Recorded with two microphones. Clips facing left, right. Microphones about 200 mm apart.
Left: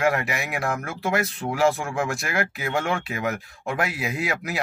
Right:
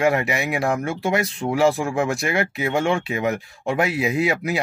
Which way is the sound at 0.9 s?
30° right (ahead or behind).